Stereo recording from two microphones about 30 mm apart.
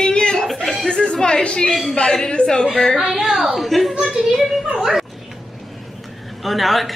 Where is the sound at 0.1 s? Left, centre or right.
Left.